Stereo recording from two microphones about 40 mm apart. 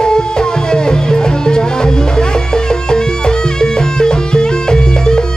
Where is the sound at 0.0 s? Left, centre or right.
Centre.